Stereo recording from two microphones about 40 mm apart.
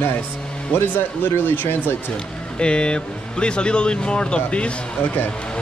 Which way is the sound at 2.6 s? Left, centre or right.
Left.